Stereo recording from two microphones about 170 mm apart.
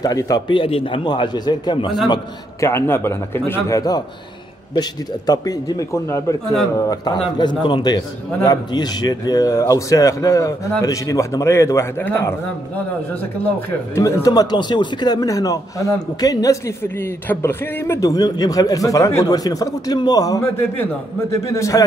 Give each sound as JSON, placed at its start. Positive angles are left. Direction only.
{"t": 0.0, "sound": "speech", "side_deg": 20}
{"t": 2.6, "sound": "speech", "side_deg": 15}
{"t": 13.9, "sound": "speech", "side_deg": 15}